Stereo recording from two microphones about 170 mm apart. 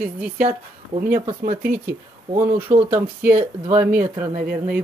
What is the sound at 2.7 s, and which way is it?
Speech, 50° right (ahead or behind).